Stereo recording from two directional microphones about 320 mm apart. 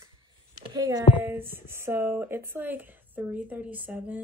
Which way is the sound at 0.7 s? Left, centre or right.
Centre.